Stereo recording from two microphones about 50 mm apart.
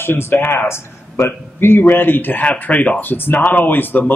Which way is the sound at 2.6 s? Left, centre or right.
Left.